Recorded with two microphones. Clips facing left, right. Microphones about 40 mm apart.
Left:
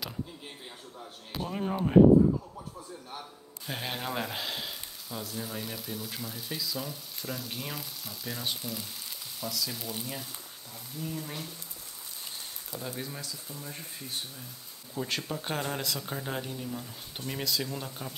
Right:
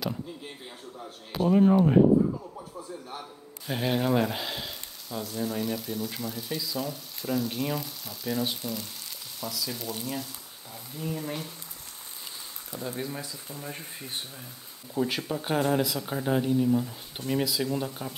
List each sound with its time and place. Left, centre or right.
0.9 s a man's voice: centre
3.1 s a man's voice: centre
11.0 s speech: centre
12.8 s speech: centre
13.2 s speech: right
15.0 s a man's voice: centre